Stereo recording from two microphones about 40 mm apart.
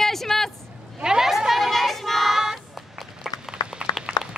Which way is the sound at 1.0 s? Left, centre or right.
Centre.